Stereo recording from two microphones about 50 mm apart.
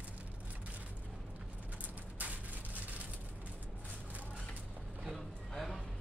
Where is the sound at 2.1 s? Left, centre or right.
Right.